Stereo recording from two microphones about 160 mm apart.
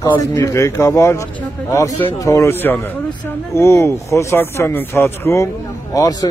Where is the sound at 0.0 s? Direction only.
20° left (ahead or behind).